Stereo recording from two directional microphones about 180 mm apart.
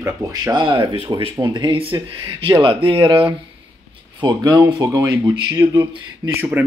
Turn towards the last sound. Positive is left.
turn(degrees=-10)  # may be behind; listen again after turning